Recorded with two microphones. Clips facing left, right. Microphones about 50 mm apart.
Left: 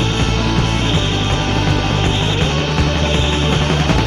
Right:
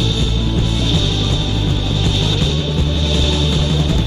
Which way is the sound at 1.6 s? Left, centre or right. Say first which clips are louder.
Left 3 dB; left.